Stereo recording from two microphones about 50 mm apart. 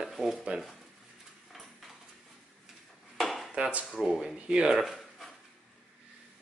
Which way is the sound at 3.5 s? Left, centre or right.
Right.